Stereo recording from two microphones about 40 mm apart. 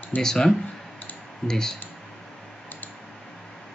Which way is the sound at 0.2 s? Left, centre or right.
Centre.